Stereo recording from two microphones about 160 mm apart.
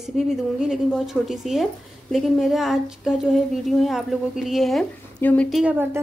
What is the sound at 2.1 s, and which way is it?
A woman's voice, centre (ahead or behind).